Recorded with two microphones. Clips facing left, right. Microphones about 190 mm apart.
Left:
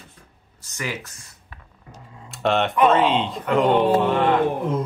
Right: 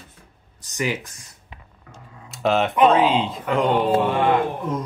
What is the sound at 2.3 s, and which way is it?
Speech, centre (ahead or behind).